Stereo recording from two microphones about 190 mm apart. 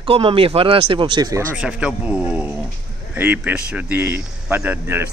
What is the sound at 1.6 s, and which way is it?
Speech, 5° right (ahead or behind).